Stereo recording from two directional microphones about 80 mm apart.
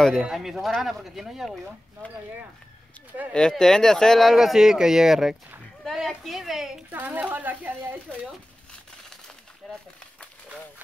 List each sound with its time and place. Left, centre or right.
0.2 s speech: centre
3.3 s speech: centre
6.9 s speech: right
9.6 s a sound: centre